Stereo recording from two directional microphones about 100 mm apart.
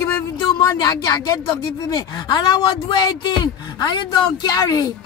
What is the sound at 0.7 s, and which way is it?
Speech, 40° left (ahead or behind).